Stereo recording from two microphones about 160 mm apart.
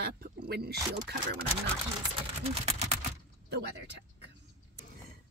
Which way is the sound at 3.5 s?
90° right.